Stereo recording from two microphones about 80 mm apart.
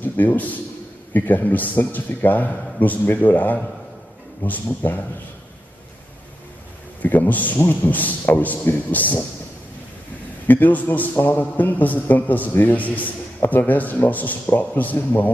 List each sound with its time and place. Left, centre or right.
0.0 s a man's voice: left
7.0 s a man's voice: left
10.4 s a man's voice: left